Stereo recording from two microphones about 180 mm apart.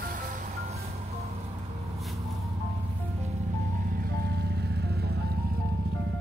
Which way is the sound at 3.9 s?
55° right (ahead or behind).